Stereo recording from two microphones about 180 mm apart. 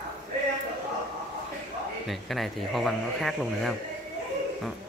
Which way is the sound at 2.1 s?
Centre (ahead or behind).